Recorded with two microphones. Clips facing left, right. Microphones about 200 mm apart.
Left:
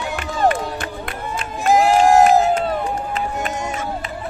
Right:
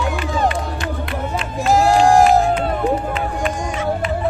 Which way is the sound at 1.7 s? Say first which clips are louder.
Even; 20° left (ahead or behind).